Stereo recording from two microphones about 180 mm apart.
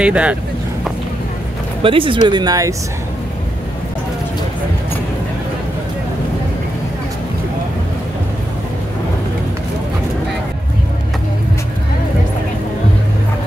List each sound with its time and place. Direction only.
0.0 s speech: 5° right (ahead or behind)
1.8 s speech: 30° right (ahead or behind)